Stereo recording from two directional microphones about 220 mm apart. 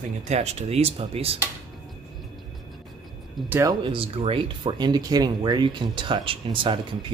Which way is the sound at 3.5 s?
15° right (ahead or behind).